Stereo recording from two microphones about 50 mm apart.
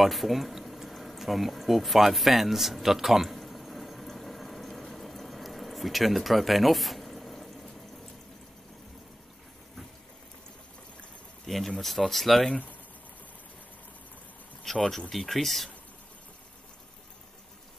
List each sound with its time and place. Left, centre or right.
0.0 s a sound: centre
11.4 s speech: centre
14.6 s speech: centre